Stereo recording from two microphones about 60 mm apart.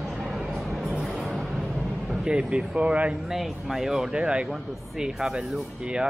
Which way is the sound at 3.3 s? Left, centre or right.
Centre.